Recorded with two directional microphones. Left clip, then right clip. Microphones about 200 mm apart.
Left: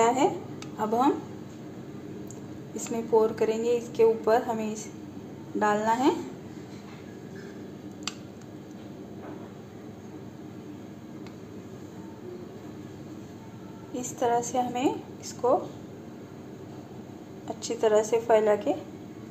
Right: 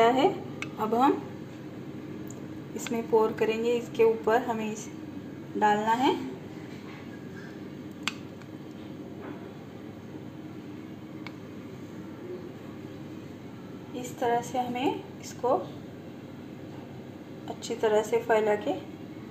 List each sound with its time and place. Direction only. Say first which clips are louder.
0.0 s a woman's voice: right 1 dB; centre (ahead or behind)
2.7 s a woman's voice: left 1 dB; centre (ahead or behind)
14.2 s a woman's voice: left 2 dB; 10° left (ahead or behind)
17.6 s a woman's voice: left 2 dB; centre (ahead or behind)